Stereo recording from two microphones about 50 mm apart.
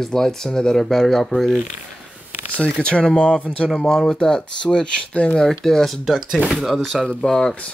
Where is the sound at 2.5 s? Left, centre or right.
Left.